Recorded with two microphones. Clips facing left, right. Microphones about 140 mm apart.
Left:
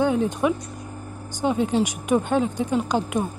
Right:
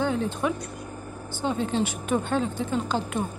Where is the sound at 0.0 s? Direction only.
15° left (ahead or behind).